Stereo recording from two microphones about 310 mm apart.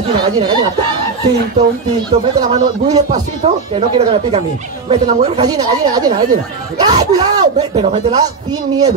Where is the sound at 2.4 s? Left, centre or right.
Centre.